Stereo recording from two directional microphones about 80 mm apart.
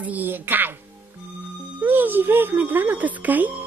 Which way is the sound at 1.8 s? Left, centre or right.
Right.